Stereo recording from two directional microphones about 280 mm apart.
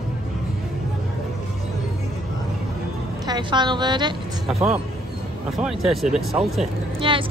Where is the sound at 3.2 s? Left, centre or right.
Centre.